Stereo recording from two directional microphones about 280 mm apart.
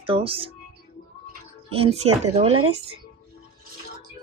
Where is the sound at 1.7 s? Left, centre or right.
Right.